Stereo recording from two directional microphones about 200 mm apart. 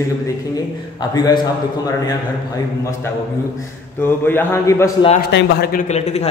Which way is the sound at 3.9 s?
10° left (ahead or behind).